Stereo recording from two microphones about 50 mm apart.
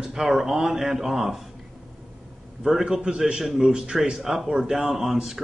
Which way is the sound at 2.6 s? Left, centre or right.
Centre.